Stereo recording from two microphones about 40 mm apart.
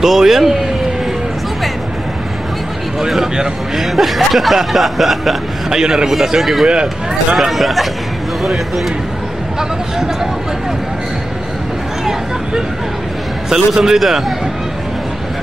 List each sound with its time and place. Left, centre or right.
0.0 s speech: centre
3.7 s speech: centre
5.7 s speech: centre
6.7 s speech: right
7.3 s speech: centre
13.5 s speech: centre